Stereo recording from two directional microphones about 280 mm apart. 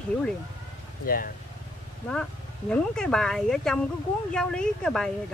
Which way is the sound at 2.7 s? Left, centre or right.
Centre.